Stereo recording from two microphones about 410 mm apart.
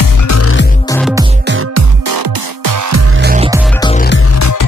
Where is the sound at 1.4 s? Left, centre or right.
Right.